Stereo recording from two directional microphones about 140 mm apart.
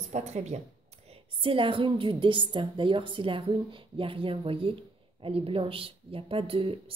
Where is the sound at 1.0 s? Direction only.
40° right (ahead or behind).